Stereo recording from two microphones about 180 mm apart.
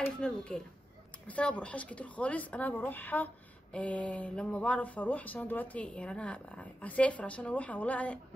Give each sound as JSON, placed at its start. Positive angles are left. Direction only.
{"t": 0.0, "sound": "speech", "side_deg": 5}